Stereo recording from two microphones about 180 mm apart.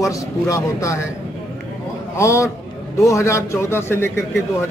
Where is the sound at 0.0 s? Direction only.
20° left (ahead or behind).